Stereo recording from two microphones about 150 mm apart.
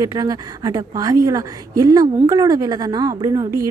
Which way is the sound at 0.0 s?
25° right (ahead or behind).